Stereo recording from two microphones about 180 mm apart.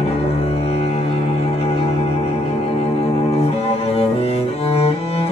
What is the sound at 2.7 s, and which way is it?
Cello, 35° left (ahead or behind).